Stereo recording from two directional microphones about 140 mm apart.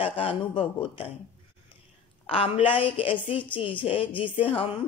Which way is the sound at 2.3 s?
40° left (ahead or behind).